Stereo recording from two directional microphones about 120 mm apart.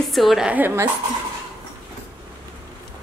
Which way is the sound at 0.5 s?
20° right (ahead or behind).